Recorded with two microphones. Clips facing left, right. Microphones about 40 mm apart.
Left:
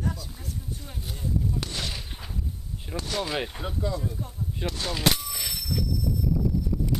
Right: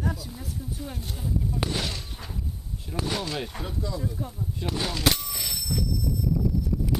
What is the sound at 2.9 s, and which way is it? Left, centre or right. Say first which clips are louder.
Speech: even; left.